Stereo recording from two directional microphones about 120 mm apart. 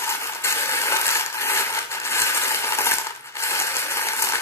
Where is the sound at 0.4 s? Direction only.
20° left (ahead or behind).